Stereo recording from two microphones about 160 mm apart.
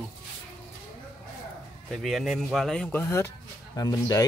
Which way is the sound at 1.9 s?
Centre (ahead or behind).